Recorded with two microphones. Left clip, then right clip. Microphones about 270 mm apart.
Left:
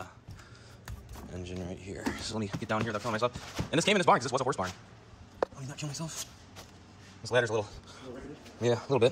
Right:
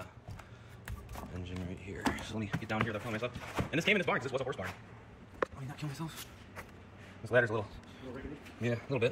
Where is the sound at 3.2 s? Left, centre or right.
Left.